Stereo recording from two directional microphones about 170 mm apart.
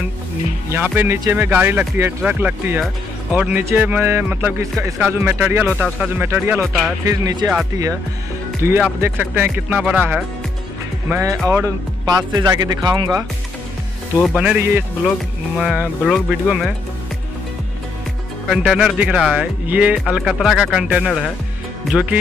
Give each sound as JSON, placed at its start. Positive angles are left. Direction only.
{"t": 0.7, "sound": "speech", "side_deg": -10}
{"t": 8.6, "sound": "speech", "side_deg": -15}
{"t": 14.2, "sound": "speech", "side_deg": -5}
{"t": 18.5, "sound": "speech", "side_deg": -5}